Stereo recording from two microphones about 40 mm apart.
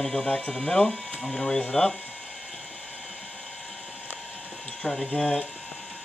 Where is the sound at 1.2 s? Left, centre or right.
Centre.